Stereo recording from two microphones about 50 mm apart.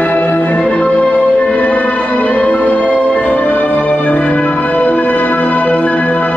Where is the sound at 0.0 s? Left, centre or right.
Left.